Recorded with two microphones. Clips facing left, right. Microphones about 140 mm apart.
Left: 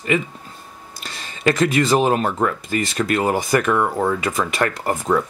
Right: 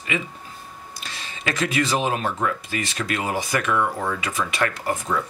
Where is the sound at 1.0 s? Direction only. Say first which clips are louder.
Left 9 dB; 45° left (ahead or behind).